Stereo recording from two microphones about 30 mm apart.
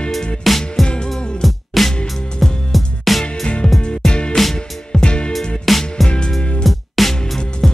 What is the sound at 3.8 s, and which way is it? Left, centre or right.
Music, left.